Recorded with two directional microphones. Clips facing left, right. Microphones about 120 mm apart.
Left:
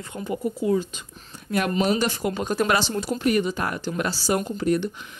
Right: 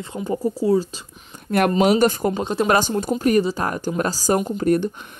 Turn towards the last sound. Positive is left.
turn(degrees=-50)  # may be behind; listen again after turning